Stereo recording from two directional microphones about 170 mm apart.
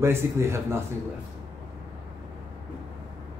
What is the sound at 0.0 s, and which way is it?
Speech, 15° right (ahead or behind).